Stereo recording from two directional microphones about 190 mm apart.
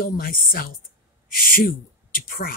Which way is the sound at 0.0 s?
50° left (ahead or behind).